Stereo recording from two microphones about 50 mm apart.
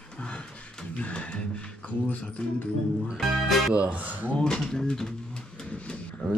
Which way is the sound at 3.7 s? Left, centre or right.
Right.